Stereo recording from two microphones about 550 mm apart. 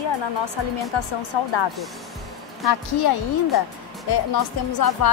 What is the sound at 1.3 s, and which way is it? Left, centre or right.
Speech, left.